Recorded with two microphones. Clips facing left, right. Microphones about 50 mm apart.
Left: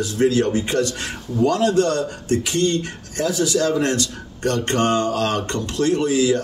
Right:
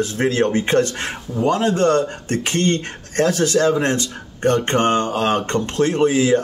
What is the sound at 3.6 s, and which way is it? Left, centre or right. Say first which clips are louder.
Speech: right 2 dB; right.